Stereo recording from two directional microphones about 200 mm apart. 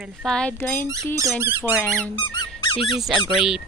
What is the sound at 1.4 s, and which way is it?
Speech, 10° right (ahead or behind).